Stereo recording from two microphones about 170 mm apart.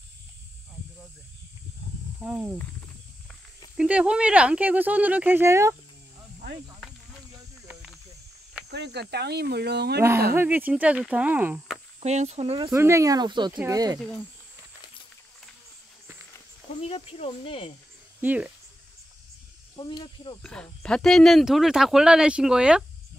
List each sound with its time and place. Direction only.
2.2 s speech: 10° right (ahead or behind)
3.7 s speech: 5° right (ahead or behind)
8.6 s speech: 80° right
10.3 s speech: 10° right (ahead or behind)
12.0 s speech: 40° right (ahead or behind)
12.7 s speech: 15° right (ahead or behind)
16.8 s speech: 35° left (ahead or behind)
18.2 s speech: 10° right (ahead or behind)
19.8 s speech: 25° left (ahead or behind)
20.4 s speech: 5° left (ahead or behind)